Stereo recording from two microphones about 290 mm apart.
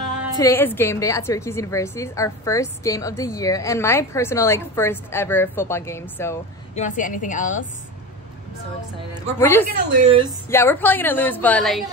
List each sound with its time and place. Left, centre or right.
0.4 s a woman's voice: centre
6.7 s a woman's voice: left
9.4 s a woman's voice: centre
9.9 s a woman's voice: right
10.5 s a woman's voice: centre